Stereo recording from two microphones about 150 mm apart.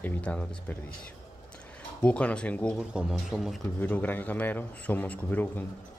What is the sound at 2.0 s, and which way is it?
Speech, 10° left (ahead or behind).